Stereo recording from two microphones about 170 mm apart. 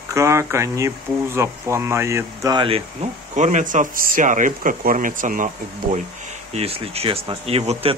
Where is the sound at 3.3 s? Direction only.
45° right (ahead or behind).